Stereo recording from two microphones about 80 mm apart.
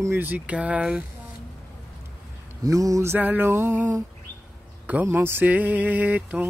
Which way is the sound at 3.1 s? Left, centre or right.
Right.